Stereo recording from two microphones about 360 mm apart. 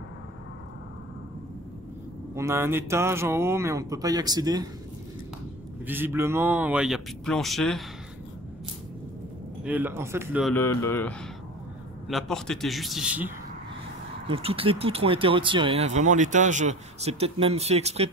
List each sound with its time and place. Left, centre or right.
2.3 s speech: centre
5.9 s speech: centre
9.7 s speech: centre
14.2 s speech: centre